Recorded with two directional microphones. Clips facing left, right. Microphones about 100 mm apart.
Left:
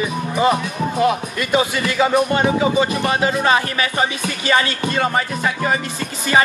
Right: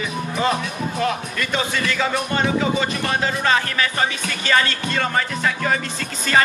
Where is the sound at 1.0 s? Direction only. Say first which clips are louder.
Left 5 dB; 15° left (ahead or behind).